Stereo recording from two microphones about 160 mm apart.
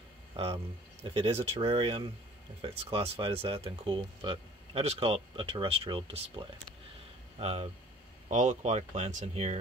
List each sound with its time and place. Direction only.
1.0 s speech: 35° right (ahead or behind)